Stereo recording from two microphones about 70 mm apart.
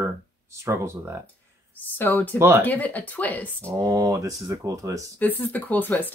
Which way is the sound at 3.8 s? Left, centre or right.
Right.